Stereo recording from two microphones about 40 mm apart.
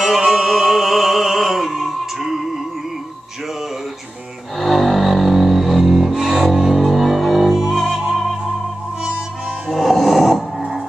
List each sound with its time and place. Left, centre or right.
0.0 s music: centre
4.6 s music: centre
7.5 s music: centre
9.7 s music: centre